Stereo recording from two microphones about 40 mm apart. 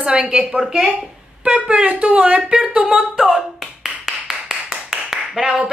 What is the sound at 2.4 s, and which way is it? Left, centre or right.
Speech, centre.